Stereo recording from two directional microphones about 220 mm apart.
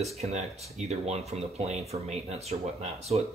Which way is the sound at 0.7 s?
30° right (ahead or behind).